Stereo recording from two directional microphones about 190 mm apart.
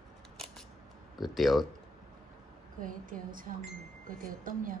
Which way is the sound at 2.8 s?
45° right (ahead or behind).